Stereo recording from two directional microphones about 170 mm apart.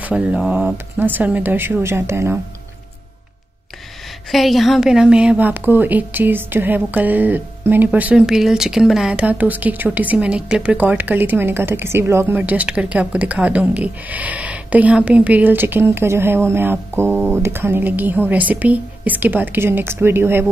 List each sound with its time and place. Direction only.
0.0 s a woman's voice: 5° right (ahead or behind)
4.3 s a woman's voice: centre (ahead or behind)